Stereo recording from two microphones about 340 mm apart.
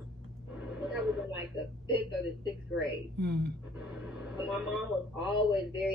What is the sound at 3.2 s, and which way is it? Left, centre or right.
Speech, right.